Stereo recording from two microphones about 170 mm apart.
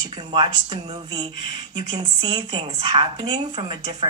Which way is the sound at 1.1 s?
25° right (ahead or behind).